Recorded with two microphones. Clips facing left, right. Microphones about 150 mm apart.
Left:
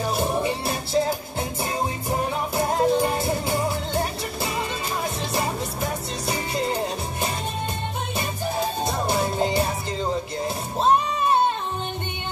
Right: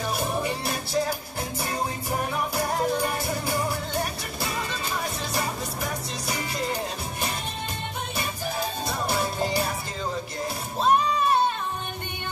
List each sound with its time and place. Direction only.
0.0 s music: 25° left (ahead or behind)
10.8 s music: 25° left (ahead or behind)